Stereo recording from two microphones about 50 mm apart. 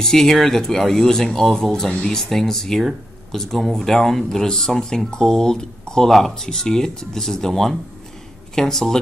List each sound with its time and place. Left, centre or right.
0.0 s speech: centre